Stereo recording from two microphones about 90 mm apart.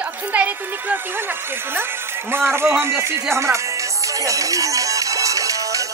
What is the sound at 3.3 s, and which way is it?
Music, 35° right (ahead or behind).